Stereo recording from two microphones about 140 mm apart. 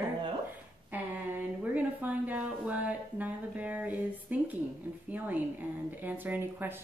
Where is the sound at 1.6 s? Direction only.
10° right (ahead or behind).